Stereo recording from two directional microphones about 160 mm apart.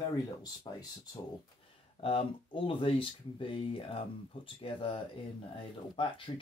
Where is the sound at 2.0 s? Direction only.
35° left (ahead or behind).